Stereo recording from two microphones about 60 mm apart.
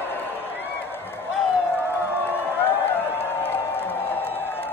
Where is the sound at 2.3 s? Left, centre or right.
Left.